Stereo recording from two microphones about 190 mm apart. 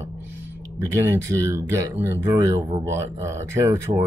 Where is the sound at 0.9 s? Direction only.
15° right (ahead or behind).